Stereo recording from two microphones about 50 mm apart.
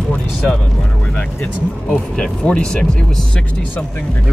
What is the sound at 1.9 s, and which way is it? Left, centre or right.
Speech, centre.